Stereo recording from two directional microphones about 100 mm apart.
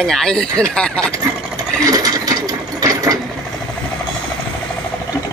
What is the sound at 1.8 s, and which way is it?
Sewing machine, 40° right (ahead or behind).